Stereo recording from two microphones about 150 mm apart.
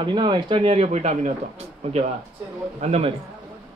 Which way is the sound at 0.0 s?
30° right (ahead or behind).